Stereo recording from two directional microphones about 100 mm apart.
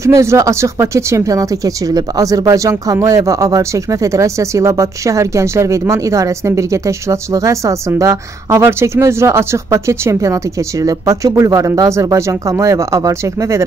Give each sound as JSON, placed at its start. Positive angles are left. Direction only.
{"t": 0.0, "sound": "speech", "side_deg": -30}